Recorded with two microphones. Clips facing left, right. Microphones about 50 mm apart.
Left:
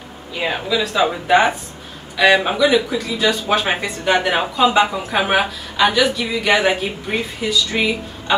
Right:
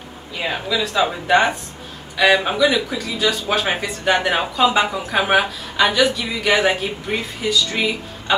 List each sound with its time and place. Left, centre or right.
0.4 s speech: centre